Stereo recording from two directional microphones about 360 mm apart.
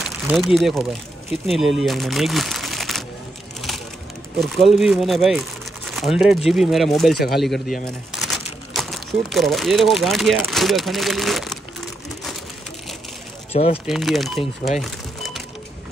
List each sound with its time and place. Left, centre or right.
0.0 s a sound: centre
0.6 s speech: centre
4.4 s speech: centre
7.2 s speech: left
7.4 s speech: centre
13.5 s speech: centre
13.8 s speech: centre
14.8 s crumpling: centre